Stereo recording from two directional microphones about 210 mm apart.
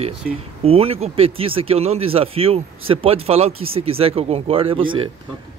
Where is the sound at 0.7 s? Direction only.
25° right (ahead or behind).